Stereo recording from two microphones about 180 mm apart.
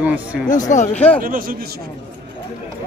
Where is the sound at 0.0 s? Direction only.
10° right (ahead or behind).